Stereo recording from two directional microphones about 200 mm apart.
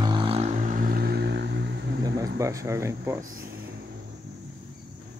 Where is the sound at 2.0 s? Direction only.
15° right (ahead or behind).